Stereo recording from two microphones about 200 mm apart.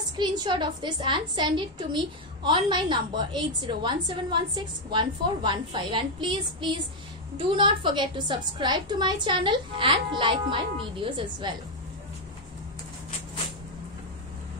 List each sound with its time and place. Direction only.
0.2 s a woman's voice: 20° right (ahead or behind)